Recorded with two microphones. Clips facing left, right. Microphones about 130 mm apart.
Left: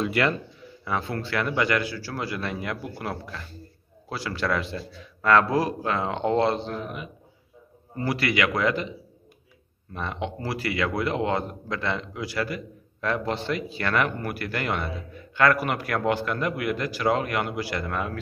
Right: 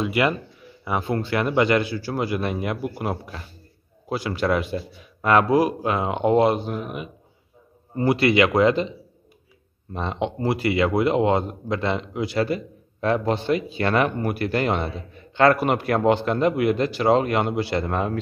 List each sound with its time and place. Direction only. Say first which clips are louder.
0.0 s a man's voice: right 2 dB; 10° right (ahead or behind)
9.9 s a man's voice: right 5 dB; 20° right (ahead or behind)